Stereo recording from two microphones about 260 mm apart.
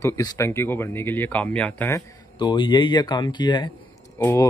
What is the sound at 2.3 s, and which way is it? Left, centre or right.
Speech, centre.